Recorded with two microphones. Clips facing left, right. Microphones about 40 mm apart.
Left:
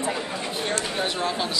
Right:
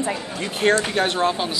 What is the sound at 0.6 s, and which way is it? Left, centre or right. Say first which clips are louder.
Speech: right 10 dB; right.